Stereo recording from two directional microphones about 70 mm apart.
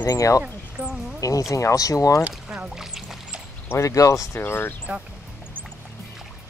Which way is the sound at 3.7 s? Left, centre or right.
Left.